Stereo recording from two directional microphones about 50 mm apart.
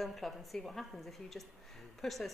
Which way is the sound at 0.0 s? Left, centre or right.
Centre.